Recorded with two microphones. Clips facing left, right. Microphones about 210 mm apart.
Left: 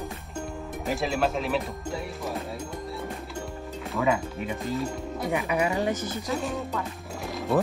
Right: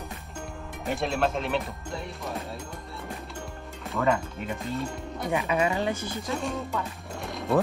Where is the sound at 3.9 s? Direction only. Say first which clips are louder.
Even; 5° left (ahead or behind).